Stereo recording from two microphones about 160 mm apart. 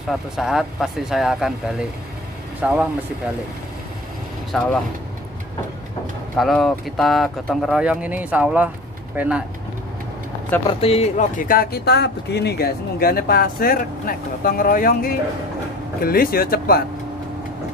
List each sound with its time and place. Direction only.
0.1 s speech: centre (ahead or behind)
4.5 s speech: 5° left (ahead or behind)
6.3 s speech: centre (ahead or behind)
10.8 s speech: 40° left (ahead or behind); by 16.8 s 70° left (ahead or behind)